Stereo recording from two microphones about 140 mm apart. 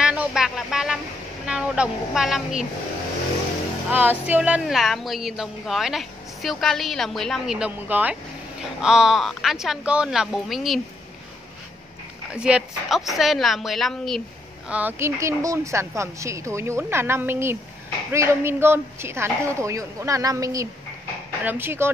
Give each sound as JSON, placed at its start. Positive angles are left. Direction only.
{"t": 0.0, "sound": "a sound", "side_deg": -5}
{"t": 1.4, "sound": "a woman's voice", "side_deg": -5}
{"t": 3.9, "sound": "a woman's voice", "side_deg": -15}
{"t": 12.4, "sound": "a woman's voice", "side_deg": -5}
{"t": 14.7, "sound": "a woman's voice", "side_deg": -15}